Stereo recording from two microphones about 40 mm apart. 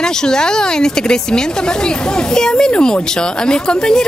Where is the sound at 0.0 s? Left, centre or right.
Centre.